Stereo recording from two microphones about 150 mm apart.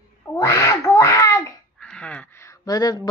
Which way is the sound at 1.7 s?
5° left (ahead or behind).